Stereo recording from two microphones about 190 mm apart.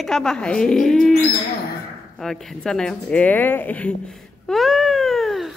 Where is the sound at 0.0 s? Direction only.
Centre (ahead or behind).